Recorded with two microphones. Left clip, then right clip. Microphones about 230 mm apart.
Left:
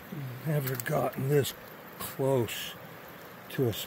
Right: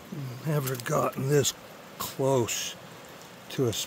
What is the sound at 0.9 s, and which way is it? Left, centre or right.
Speech, centre.